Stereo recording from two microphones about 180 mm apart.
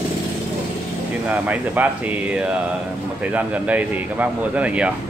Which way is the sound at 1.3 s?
10° right (ahead or behind).